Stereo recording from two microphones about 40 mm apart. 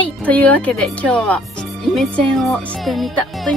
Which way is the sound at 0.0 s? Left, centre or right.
Left.